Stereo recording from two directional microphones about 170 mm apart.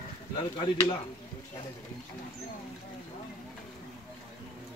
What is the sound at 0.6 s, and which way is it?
Speech, 25° left (ahead or behind).